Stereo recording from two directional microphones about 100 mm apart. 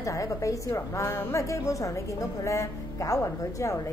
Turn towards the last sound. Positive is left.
turn(degrees=30)  # may be behind; listen again after turning